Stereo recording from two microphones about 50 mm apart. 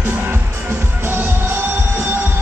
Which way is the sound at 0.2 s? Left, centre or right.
Right.